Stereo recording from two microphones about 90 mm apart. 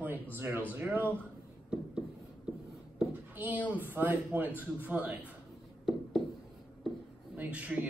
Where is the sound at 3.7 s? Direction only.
20° right (ahead or behind).